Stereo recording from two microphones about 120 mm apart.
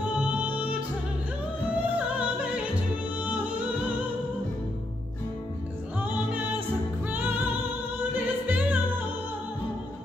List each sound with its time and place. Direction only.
0.2 s music: 10° right (ahead or behind)
5.9 s music: 15° right (ahead or behind)